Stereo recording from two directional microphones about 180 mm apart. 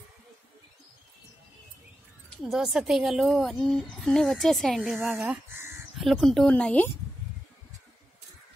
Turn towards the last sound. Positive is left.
turn(degrees=5)  # may be behind; listen again after turning